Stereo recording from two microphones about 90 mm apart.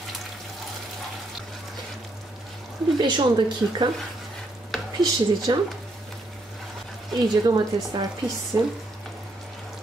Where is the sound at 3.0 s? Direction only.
55° right (ahead or behind).